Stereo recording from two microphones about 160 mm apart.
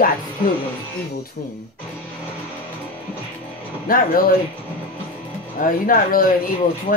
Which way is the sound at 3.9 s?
65° left (ahead or behind).